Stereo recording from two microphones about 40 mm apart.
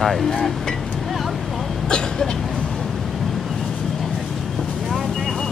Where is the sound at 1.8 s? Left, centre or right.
Centre.